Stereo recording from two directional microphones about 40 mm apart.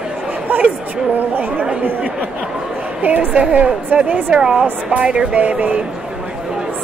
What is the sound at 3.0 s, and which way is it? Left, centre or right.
A woman's voice, right.